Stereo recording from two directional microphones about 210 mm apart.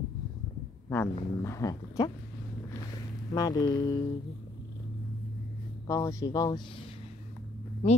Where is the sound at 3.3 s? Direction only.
20° left (ahead or behind).